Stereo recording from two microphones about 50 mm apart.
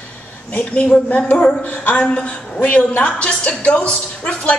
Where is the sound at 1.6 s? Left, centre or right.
Left.